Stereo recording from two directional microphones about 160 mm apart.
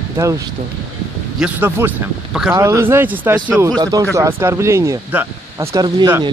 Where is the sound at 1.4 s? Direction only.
10° right (ahead or behind).